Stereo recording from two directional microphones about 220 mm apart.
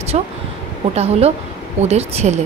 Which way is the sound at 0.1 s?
30° right (ahead or behind).